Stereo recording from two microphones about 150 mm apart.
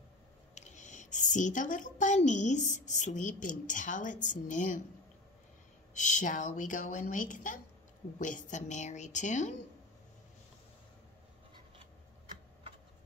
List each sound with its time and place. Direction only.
0.6 s a woman's voice: 50° left (ahead or behind)
5.9 s a woman's voice: 55° left (ahead or behind)